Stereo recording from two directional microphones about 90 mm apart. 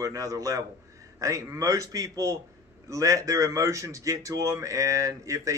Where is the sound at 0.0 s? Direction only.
40° right (ahead or behind).